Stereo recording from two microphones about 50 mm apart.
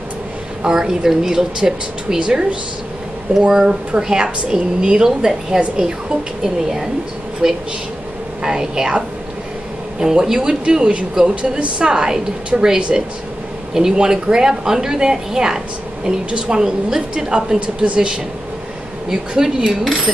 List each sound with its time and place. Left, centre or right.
0.7 s a woman's voice: centre